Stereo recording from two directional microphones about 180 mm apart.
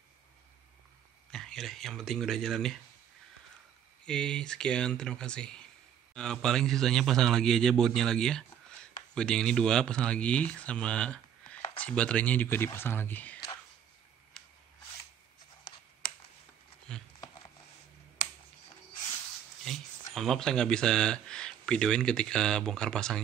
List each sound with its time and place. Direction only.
1.3 s speech: centre (ahead or behind)
4.0 s a man's voice: 5° left (ahead or behind)
16.9 s a sound: 5° left (ahead or behind)
19.6 s speech: centre (ahead or behind)